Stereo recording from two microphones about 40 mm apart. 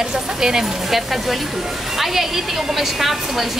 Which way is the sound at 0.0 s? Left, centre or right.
Centre.